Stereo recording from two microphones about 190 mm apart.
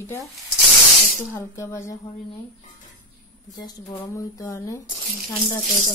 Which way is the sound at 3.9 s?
10° left (ahead or behind).